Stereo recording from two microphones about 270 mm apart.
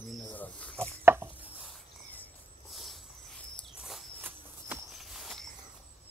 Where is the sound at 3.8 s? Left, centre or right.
Centre.